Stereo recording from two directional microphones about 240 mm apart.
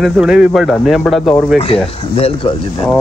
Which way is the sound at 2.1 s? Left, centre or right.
Left.